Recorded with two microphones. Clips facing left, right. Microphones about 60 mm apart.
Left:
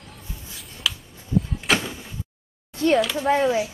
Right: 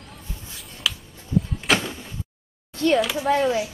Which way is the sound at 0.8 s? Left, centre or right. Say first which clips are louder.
Even; centre.